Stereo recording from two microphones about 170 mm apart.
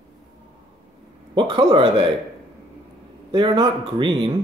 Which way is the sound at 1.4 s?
25° right (ahead or behind).